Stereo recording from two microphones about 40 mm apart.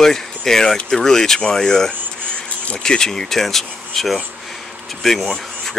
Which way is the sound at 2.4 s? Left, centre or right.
Left.